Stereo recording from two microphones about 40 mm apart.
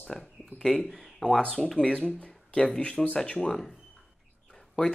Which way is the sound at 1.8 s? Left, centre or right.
Left.